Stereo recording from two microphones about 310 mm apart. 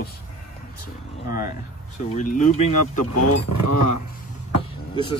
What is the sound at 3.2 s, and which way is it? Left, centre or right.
Speech, left.